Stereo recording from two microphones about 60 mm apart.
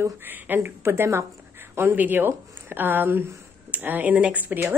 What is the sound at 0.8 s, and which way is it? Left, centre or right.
Speech, right.